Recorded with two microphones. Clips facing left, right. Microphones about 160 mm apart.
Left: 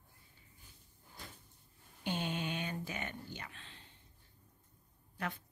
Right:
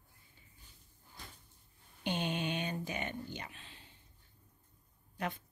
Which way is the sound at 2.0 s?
20° right (ahead or behind).